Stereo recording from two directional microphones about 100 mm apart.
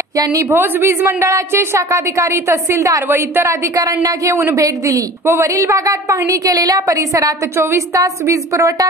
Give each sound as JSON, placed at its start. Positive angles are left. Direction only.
{"t": 0.1, "sound": "a woman's voice", "side_deg": -35}